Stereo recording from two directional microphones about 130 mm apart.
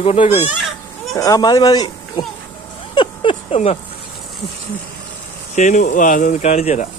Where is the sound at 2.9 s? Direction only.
45° left (ahead or behind).